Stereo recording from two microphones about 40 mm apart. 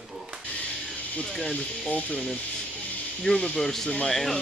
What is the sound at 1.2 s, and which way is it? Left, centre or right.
Speech, centre.